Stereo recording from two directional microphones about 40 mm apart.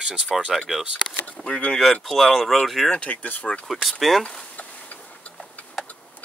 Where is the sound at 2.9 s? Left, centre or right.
Left.